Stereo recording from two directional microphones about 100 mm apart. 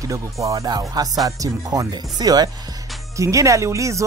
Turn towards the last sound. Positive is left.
turn(degrees=-30)  # may be behind; listen again after turning